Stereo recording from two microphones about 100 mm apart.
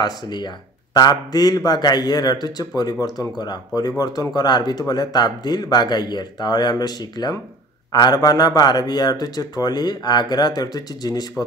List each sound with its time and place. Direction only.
0.0 s a man's voice: 45° left (ahead or behind)